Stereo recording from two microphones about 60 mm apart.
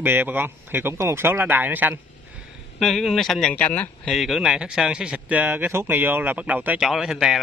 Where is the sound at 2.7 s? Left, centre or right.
Centre.